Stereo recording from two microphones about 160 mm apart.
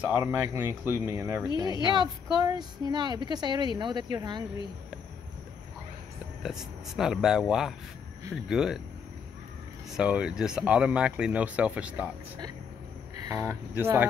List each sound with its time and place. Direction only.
0.0 s speech: 15° right (ahead or behind)
1.5 s speech: 30° left (ahead or behind)
2.4 s speech: 25° right (ahead or behind)
6.4 s speech: centre (ahead or behind)
9.8 s speech: 5° right (ahead or behind)
13.3 s speech: 20° right (ahead or behind)